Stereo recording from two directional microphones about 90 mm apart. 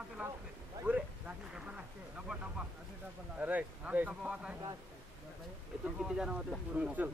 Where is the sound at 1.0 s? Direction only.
10° right (ahead or behind).